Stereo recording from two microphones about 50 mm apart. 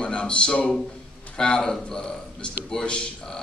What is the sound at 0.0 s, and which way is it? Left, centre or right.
A man's voice, left.